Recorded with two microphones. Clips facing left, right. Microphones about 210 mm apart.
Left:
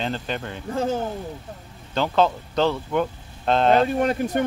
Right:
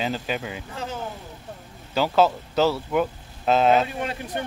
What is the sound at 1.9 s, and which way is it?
Speech, 5° right (ahead or behind).